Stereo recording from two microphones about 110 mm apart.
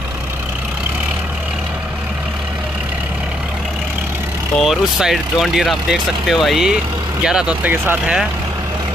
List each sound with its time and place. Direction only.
4.6 s speech: centre (ahead or behind)
7.7 s speech: 20° right (ahead or behind)